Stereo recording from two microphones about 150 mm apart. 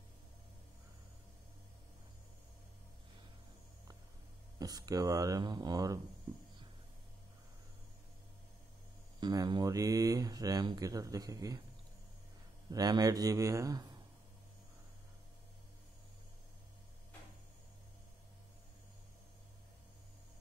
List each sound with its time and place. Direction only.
4.6 s speech: 25° right (ahead or behind)
9.2 s speech: 25° right (ahead or behind)
12.6 s speech: 25° right (ahead or behind)